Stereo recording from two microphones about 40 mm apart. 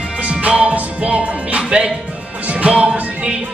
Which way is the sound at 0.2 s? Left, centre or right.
Right.